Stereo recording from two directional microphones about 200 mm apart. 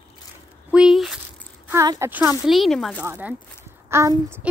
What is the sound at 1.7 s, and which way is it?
Speech, 15° right (ahead or behind).